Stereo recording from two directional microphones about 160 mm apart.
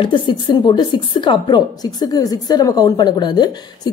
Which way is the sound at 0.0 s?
30° left (ahead or behind).